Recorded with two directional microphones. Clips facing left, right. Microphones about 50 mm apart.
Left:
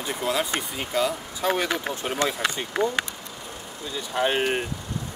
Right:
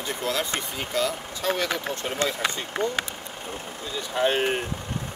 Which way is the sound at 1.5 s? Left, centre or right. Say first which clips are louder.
Left 1 dB; left.